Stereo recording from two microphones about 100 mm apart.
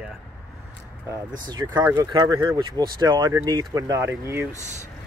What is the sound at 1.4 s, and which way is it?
Speech, 40° right (ahead or behind).